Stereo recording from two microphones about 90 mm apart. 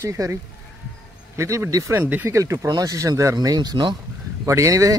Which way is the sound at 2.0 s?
20° right (ahead or behind).